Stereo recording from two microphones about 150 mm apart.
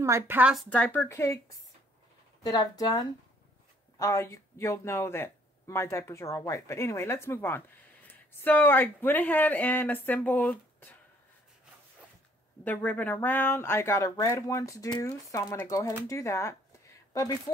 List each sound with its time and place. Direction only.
0.0 s speech: 15° right (ahead or behind)
0.7 s speech: 10° left (ahead or behind)
2.4 s speech: 25° left (ahead or behind); by 10.9 s 10° left (ahead or behind)
12.6 s speech: 10° left (ahead or behind)